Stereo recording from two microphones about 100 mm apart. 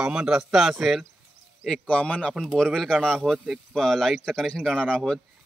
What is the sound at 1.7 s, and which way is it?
Speech, 10° left (ahead or behind).